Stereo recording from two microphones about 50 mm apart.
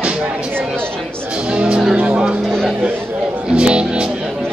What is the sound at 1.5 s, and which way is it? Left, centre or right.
Music, centre.